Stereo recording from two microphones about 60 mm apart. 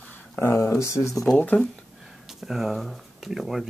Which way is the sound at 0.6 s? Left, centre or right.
Left.